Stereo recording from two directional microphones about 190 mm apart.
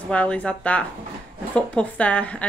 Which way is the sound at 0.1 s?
5° left (ahead or behind).